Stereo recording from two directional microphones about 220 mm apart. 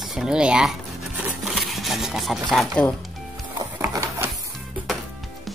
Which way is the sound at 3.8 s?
15° right (ahead or behind).